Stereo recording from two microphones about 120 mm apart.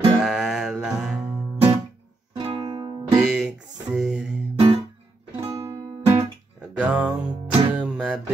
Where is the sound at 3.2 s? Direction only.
5° right (ahead or behind).